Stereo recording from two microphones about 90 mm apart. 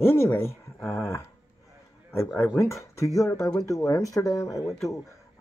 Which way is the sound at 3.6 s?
40° left (ahead or behind).